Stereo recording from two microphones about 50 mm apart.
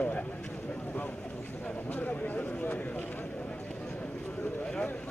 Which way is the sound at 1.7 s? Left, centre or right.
Left.